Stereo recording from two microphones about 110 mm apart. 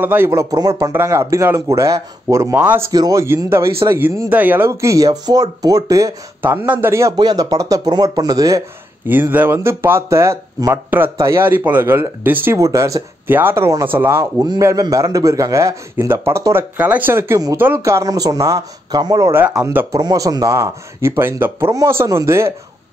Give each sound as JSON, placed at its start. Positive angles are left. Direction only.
{"t": 0.0, "sound": "speech", "side_deg": -20}
{"t": 2.5, "sound": "speech", "side_deg": -15}
{"t": 2.9, "sound": "speech", "side_deg": -35}
{"t": 6.4, "sound": "speech", "side_deg": -20}
{"t": 7.2, "sound": "speech", "side_deg": -40}
{"t": 9.0, "sound": "speech", "side_deg": -20}
{"t": 19.6, "sound": "speech", "side_deg": -20}
{"t": 19.9, "sound": "speech", "side_deg": -35}